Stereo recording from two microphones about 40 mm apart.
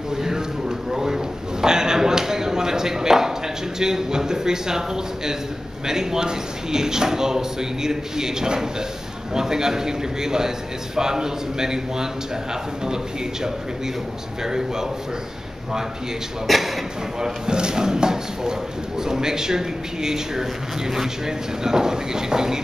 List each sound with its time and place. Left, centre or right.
0.1 s a sound: centre
3.8 s speech: centre
16.4 s speech: centre
17.2 s speech: centre